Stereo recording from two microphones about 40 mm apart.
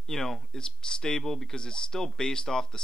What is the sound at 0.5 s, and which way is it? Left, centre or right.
Speech, centre.